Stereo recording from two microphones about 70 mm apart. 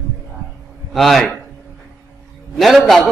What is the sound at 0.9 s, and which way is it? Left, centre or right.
Speech, centre.